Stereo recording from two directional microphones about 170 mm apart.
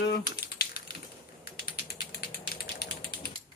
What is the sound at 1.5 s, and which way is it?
Ratchet, 65° left (ahead or behind).